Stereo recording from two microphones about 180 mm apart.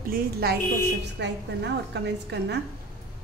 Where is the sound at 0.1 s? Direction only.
60° right (ahead or behind).